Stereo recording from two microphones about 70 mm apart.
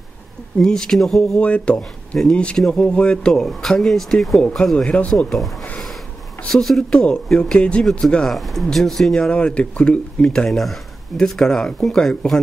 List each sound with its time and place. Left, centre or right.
0.6 s speech: centre
1.4 s speech: centre
4.4 s speech: centre
5.3 s speech: centre